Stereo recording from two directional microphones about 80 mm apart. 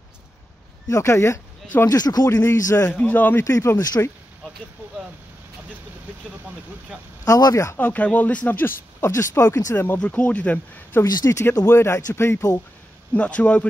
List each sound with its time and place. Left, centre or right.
0.8 s speech: left
1.9 s speech: left
2.9 s speech: centre
3.4 s speech: left
3.7 s speech: left
7.2 s speech: left
7.7 s speech: centre
9.9 s speech: centre
11.1 s speech: left
11.6 s speech: left
13.1 s speech: centre